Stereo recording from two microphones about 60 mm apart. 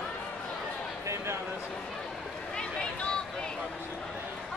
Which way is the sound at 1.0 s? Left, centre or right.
Right.